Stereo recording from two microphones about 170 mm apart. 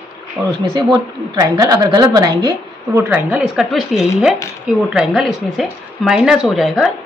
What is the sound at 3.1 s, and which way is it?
Speech, 10° right (ahead or behind).